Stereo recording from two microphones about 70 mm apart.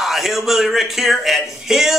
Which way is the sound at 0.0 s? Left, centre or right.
Centre.